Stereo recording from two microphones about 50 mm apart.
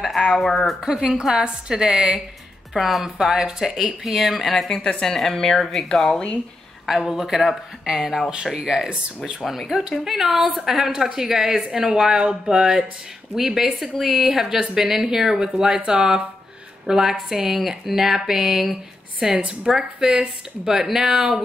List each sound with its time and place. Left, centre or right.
0.4 s speech: centre
0.7 s a woman's voice: centre
2.7 s a woman's voice: centre
4.6 s speech: centre
6.9 s a woman's voice: centre
9.4 s a woman's voice: centre
19.3 s a woman's voice: centre